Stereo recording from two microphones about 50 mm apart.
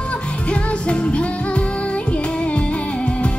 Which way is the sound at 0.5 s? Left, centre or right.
Left.